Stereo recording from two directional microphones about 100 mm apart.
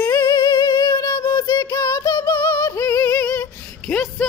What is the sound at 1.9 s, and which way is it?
Music, 40° left (ahead or behind).